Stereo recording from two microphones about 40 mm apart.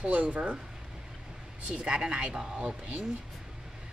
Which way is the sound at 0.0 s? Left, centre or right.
Right.